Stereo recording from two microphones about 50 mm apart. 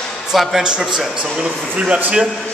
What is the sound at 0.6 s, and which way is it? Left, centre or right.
A man's voice, centre.